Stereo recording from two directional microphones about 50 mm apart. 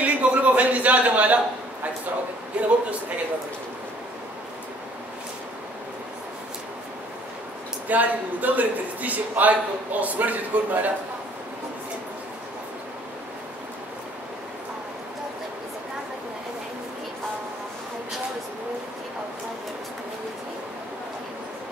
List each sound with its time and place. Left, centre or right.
0.0 s a sound: right
2.6 s a man's voice: right
7.9 s a man's voice: right